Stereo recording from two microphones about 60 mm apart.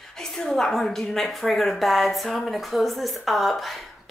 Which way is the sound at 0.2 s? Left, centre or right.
Centre.